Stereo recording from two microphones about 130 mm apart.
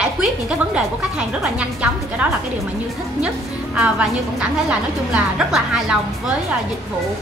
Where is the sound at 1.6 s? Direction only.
10° right (ahead or behind).